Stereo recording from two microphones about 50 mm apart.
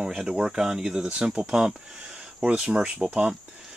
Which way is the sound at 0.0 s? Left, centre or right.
Centre.